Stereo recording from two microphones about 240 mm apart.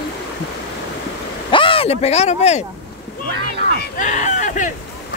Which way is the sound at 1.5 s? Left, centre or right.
Left.